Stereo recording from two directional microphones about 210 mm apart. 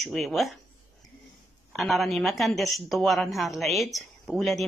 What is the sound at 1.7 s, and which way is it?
Speech, centre (ahead or behind).